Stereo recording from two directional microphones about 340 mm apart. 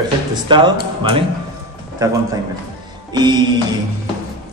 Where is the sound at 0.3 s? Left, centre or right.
Centre.